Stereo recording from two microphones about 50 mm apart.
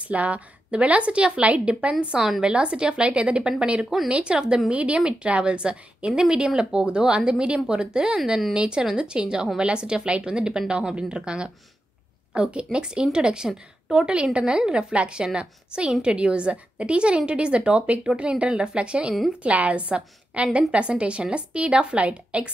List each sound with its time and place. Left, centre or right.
0.0 s a woman's voice: right
2.1 s a woman's voice: centre
2.4 s a woman's voice: centre